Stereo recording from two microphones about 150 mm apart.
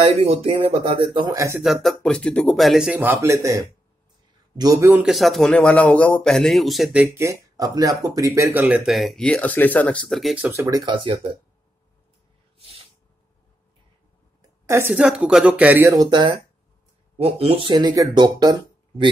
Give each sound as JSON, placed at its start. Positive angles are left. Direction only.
{"t": 0.0, "sound": "speech", "side_deg": -40}
{"t": 1.3, "sound": "speech", "side_deg": -20}
{"t": 1.6, "sound": "speech", "side_deg": 0}
{"t": 3.0, "sound": "speech", "side_deg": -15}
{"t": 5.0, "sound": "speech", "side_deg": 0}
{"t": 7.2, "sound": "speech", "side_deg": -20}
{"t": 10.4, "sound": "speech", "side_deg": -20}
{"t": 10.9, "sound": "speech", "side_deg": -35}
{"t": 12.5, "sound": "a sound", "side_deg": -40}
{"t": 14.7, "sound": "a woman's voice", "side_deg": -15}
{"t": 15.9, "sound": "speech", "side_deg": -30}